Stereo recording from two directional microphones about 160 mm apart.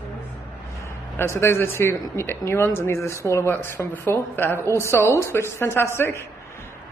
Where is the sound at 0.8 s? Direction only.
15° left (ahead or behind).